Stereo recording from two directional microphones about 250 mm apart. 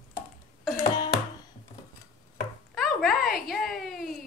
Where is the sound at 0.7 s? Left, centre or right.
Centre.